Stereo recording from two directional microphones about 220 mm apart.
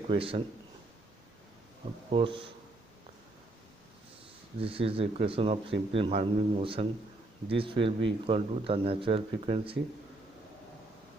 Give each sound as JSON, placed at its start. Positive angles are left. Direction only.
{"t": 0.1, "sound": "speech", "side_deg": -25}
{"t": 2.0, "sound": "speech", "side_deg": -25}
{"t": 4.6, "sound": "speech", "side_deg": -25}